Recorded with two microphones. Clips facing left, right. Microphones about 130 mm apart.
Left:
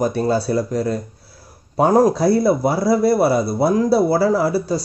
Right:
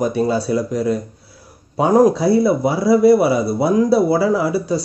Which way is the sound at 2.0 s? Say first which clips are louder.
Right 1 dB; 40° left (ahead or behind).